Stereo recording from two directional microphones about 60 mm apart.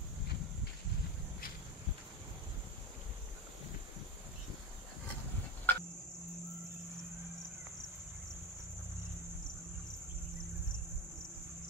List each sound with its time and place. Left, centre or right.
5.7 s cricket: left